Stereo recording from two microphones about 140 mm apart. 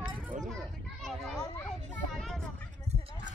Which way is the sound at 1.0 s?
Centre (ahead or behind).